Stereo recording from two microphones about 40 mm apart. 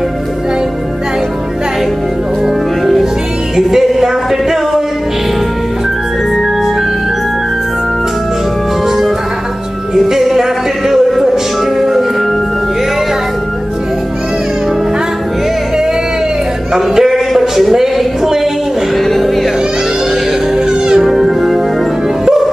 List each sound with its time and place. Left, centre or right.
3.5 s music: centre
10.0 s music: centre
16.7 s a sound: centre
19.0 s music: centre
20.5 s music: centre
21.0 s music: centre